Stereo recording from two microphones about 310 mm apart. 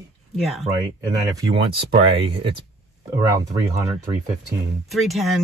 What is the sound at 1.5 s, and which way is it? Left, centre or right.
Speech, centre.